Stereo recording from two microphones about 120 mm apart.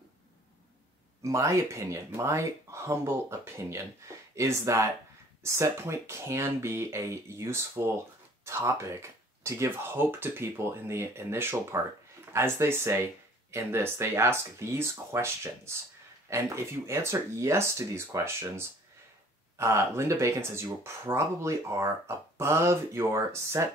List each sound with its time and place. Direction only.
1.2 s speech: 25° right (ahead or behind)